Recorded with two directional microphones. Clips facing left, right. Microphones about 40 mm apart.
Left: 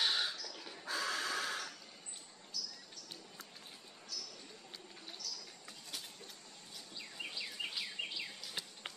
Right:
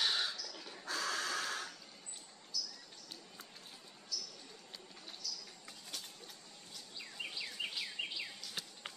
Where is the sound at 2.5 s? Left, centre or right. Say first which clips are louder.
Right 2 dB; left.